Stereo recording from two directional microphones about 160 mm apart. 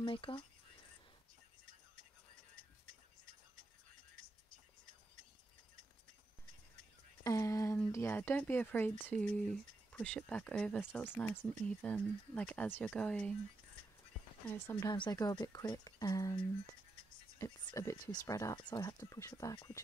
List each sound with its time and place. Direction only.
0.0 s speech: 30° left (ahead or behind)
7.2 s speech: 20° left (ahead or behind)
14.5 s speech: 15° left (ahead or behind)
17.4 s speech: 20° left (ahead or behind)